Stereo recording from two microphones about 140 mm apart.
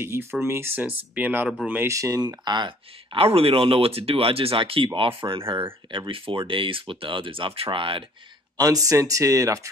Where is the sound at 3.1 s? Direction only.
45° right (ahead or behind).